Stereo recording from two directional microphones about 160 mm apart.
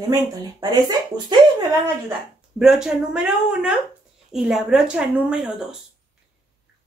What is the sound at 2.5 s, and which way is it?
Speech, 5° right (ahead or behind).